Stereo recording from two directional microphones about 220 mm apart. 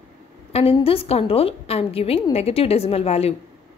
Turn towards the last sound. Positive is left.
turn(degrees=25)  # may be behind; listen again after turning